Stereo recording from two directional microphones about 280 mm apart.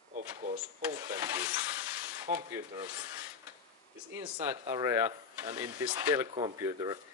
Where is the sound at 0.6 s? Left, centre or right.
Centre.